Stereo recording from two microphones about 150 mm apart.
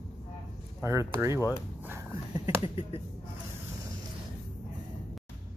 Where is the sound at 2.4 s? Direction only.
35° left (ahead or behind).